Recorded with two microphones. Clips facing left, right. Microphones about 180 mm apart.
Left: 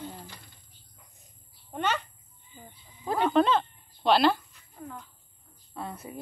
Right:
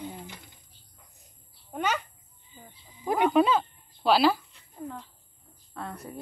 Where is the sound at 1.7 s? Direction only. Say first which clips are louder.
Even; 5° right (ahead or behind).